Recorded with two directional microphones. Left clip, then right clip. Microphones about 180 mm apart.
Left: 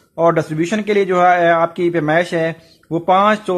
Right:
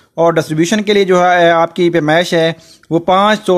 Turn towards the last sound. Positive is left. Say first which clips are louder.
# right 3 dB
turn(degrees=-35)  # may be behind; listen again after turning